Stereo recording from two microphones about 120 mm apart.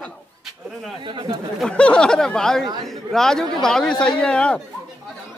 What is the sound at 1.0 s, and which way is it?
Speech, 45° right (ahead or behind).